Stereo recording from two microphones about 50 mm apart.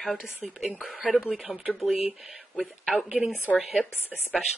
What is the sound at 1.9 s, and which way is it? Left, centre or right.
Speech, right.